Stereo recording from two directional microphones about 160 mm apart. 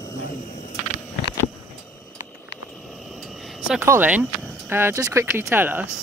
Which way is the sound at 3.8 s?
10° right (ahead or behind).